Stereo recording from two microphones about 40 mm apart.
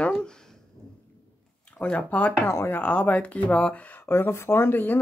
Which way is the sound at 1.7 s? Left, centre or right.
Left.